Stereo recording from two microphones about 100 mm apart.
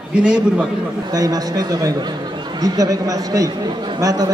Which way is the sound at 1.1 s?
40° right (ahead or behind).